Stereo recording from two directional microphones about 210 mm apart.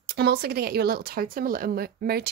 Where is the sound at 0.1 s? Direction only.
50° right (ahead or behind).